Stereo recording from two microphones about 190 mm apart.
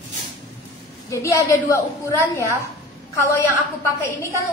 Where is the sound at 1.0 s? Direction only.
15° left (ahead or behind).